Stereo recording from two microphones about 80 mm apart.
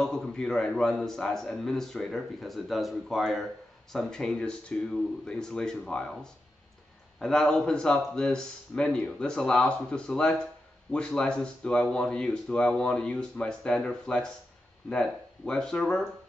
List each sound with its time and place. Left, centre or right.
0.0 s a man's voice: centre
7.2 s speech: centre